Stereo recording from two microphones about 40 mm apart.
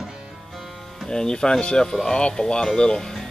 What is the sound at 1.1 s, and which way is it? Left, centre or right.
Speech, centre.